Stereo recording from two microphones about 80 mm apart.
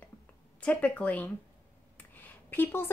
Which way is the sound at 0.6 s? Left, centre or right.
Centre.